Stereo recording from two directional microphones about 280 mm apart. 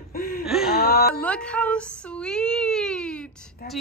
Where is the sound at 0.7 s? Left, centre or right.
Left.